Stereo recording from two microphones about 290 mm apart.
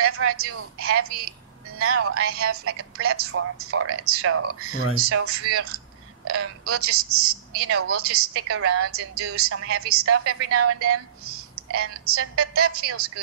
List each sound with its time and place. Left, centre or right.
0.0 s a woman's voice: right